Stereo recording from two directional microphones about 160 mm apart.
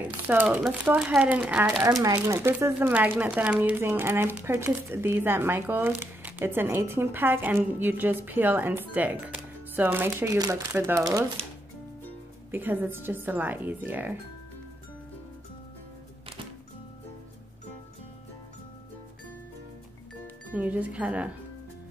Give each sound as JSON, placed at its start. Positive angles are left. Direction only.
{"t": 0.0, "sound": "speech", "side_deg": -10}
{"t": 2.0, "sound": "speech", "side_deg": -20}
{"t": 12.4, "sound": "speech", "side_deg": -10}
{"t": 20.5, "sound": "speech", "side_deg": -10}